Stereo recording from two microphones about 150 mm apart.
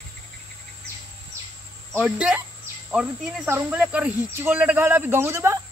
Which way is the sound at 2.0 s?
5° right (ahead or behind).